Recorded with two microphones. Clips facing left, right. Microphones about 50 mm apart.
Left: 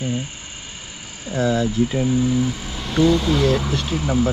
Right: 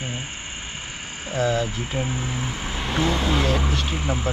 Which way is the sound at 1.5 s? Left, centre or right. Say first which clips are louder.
Left 5 dB; right.